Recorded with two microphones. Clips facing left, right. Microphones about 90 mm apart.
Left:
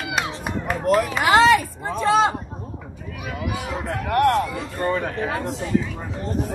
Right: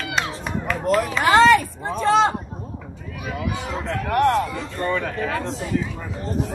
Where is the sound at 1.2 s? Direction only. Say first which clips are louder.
Right 2 dB; 35° right (ahead or behind).